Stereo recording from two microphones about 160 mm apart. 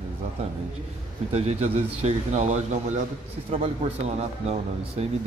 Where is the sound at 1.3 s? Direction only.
45° right (ahead or behind).